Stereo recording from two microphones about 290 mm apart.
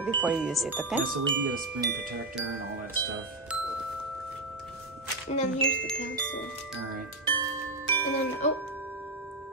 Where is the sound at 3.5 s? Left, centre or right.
Centre.